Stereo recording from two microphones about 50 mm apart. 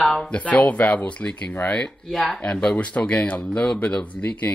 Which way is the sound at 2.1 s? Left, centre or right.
Centre.